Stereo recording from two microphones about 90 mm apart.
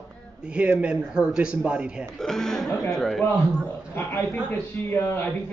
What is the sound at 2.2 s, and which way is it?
A man's voice, 5° left (ahead or behind).